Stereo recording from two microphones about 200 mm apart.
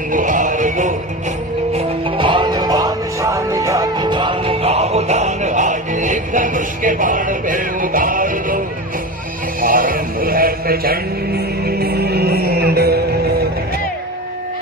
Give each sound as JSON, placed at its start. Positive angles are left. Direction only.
{"t": 0.1, "sound": "music", "side_deg": -40}
{"t": 1.7, "sound": "music", "side_deg": -25}
{"t": 9.6, "sound": "a sound", "side_deg": -45}